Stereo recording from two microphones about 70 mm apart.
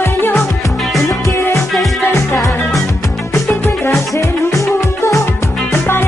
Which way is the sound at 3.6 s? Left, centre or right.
Left.